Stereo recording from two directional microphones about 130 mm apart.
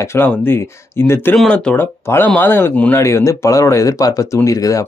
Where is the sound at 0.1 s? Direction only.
15° left (ahead or behind).